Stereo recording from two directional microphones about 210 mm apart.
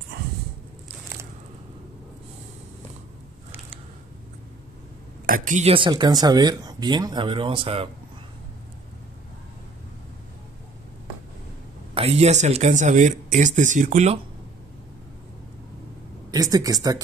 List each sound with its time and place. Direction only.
5.2 s speech: 40° right (ahead or behind)
11.9 s speech: 30° right (ahead or behind)
16.3 s speech: 15° right (ahead or behind)